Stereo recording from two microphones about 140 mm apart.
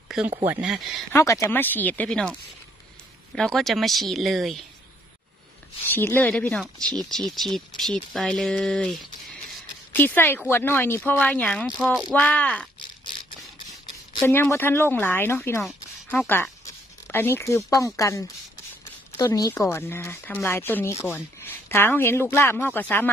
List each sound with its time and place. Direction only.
0.5 s speech: 5° right (ahead or behind)
1.1 s speech: 20° left (ahead or behind); by 2.3 s 5° left (ahead or behind)
3.3 s speech: 5° left (ahead or behind)
5.9 s speech: 15° left (ahead or behind)
9.9 s speech: 15° left (ahead or behind)
11.6 s speech: 5° right (ahead or behind)
12.1 s speech: 10° left (ahead or behind)
14.2 s speech: 15° left (ahead or behind)